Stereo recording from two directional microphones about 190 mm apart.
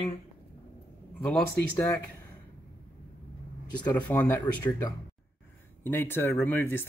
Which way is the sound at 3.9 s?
10° left (ahead or behind).